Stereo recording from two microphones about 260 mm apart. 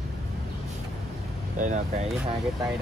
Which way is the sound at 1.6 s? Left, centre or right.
Right.